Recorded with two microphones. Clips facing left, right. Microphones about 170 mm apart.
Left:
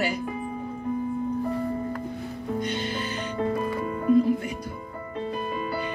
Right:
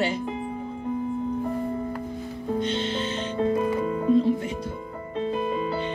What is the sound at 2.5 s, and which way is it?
Music, 25° right (ahead or behind).